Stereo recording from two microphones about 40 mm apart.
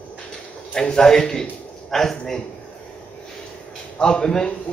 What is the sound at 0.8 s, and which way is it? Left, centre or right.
Speech, centre.